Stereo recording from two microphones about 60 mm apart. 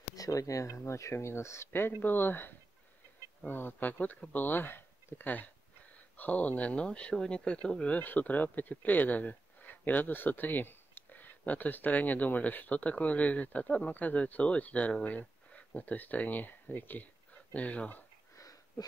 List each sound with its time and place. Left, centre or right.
0.1 s speech: left; by 7.9 s centre
7.9 s speech: left
18.4 s sniff: left